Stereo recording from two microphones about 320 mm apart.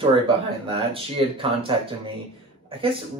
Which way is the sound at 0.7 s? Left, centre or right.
Centre.